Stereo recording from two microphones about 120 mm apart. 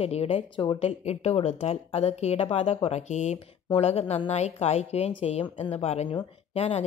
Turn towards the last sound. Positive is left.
turn(degrees=45)  # may be behind; listen again after turning